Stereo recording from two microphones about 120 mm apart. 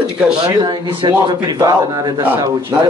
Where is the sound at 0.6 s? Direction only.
40° right (ahead or behind).